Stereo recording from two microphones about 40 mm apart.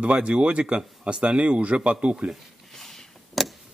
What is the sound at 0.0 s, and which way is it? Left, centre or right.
Speech, right.